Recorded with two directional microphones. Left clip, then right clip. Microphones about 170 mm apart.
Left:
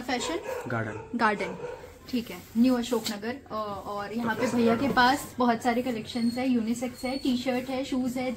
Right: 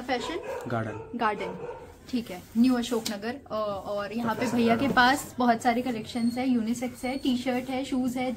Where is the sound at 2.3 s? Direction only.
20° right (ahead or behind).